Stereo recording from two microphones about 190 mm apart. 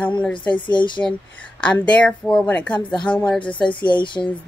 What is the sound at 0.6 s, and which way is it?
Speech, 25° left (ahead or behind).